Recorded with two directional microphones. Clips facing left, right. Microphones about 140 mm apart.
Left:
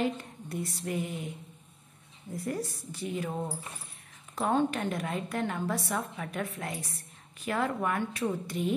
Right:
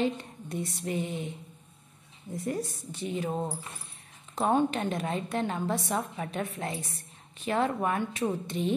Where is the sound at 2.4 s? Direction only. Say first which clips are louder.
Right 2 dB; 20° right (ahead or behind).